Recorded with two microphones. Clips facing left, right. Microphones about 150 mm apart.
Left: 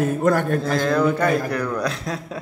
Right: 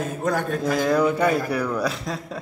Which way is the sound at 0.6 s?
10° right (ahead or behind).